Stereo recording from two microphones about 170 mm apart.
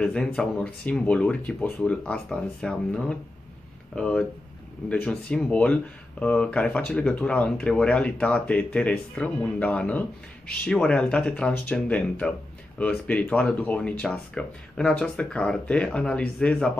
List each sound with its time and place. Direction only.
0.0 s speech: 5° left (ahead or behind)